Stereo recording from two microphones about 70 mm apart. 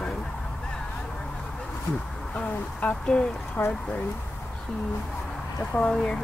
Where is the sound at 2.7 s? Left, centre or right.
Centre.